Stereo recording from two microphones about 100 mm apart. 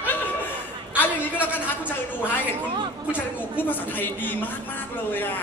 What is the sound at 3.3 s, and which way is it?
A woman's voice, 20° left (ahead or behind).